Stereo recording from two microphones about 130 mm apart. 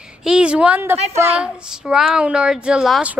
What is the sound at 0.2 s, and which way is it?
A woman's voice, 5° right (ahead or behind).